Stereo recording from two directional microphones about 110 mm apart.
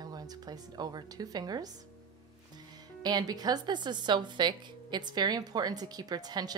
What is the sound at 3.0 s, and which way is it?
A woman's voice, 40° right (ahead or behind).